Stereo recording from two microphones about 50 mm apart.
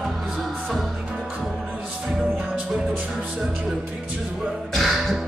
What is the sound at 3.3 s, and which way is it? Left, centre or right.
Music, centre.